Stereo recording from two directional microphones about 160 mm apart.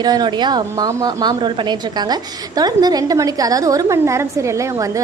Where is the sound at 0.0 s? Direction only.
25° right (ahead or behind).